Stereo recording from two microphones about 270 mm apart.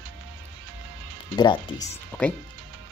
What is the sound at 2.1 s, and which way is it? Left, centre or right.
Speech, centre.